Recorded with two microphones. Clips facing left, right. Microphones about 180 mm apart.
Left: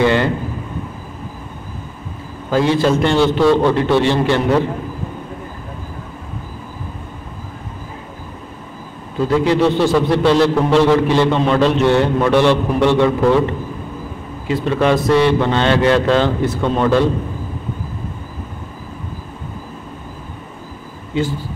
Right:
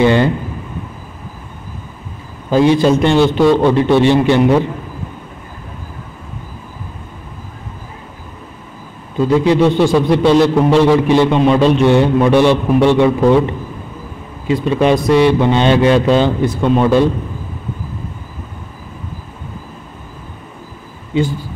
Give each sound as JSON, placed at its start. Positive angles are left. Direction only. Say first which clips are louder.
{"t": 0.0, "sound": "a man's voice", "louder": "right 3 dB", "side_deg": -20}
{"t": 2.5, "sound": "a man's voice", "louder": "right 4 dB", "side_deg": -15}
{"t": 9.3, "sound": "a man's voice", "louder": "right 3 dB", "side_deg": -20}